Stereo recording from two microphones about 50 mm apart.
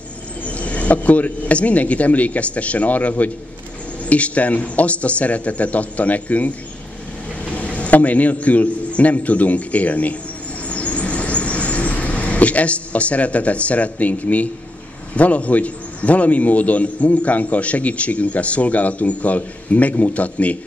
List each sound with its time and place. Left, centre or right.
0.5 s a man's voice: left
7.5 s a man's voice: left
10.7 s vehicle: left
15.1 s a man's voice: left